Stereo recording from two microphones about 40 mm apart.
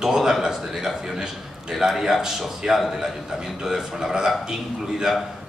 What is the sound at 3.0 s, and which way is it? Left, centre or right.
A man's voice, centre.